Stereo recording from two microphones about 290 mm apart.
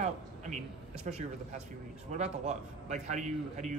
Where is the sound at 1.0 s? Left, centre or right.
Right.